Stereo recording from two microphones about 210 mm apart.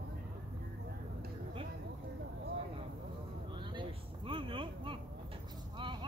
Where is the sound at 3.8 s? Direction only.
25° right (ahead or behind).